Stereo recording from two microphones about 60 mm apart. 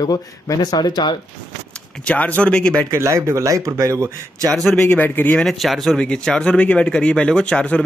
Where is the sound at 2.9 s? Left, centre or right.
Right.